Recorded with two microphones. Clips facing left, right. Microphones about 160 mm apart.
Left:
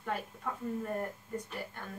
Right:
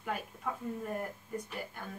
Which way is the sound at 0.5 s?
5° right (ahead or behind).